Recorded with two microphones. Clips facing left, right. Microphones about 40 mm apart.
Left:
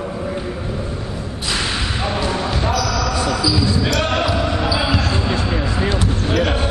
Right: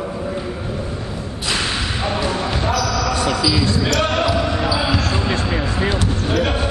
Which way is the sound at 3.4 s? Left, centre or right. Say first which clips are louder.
Left 1 dB; right.